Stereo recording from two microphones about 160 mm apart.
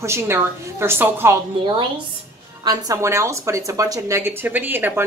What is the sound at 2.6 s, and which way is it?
A woman's voice, 25° right (ahead or behind).